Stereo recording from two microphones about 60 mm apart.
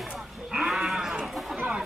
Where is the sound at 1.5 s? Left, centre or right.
Centre.